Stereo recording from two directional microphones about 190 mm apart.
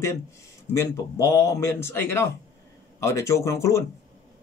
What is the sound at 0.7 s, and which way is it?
Speech, 15° left (ahead or behind).